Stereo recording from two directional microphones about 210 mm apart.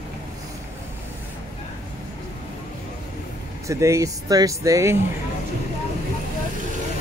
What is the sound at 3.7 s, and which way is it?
Speech, 15° right (ahead or behind).